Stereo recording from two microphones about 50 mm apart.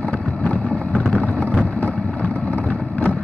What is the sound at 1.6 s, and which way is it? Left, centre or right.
Thunder, left.